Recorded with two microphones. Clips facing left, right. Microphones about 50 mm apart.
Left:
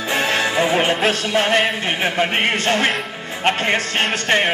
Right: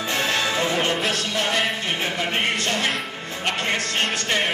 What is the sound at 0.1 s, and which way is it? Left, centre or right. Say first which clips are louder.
Music: left 5 dB; left.